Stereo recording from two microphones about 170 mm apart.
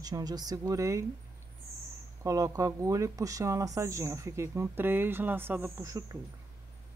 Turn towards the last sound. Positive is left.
turn(degrees=-20)  # may be behind; listen again after turning